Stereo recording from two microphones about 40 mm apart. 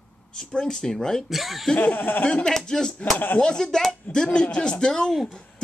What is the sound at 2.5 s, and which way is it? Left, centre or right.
Speech, centre.